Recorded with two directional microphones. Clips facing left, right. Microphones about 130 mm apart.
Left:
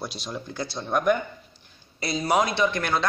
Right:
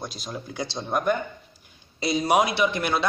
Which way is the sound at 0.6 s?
20° right (ahead or behind).